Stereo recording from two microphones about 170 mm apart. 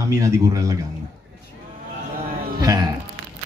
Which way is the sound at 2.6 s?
20° right (ahead or behind).